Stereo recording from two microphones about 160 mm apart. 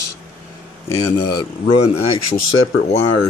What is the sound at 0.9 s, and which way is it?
Speech, 25° left (ahead or behind).